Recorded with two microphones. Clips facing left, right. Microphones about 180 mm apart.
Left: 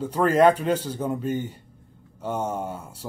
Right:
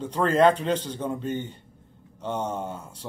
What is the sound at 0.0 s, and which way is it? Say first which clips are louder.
Speech: left 2 dB; 10° left (ahead or behind).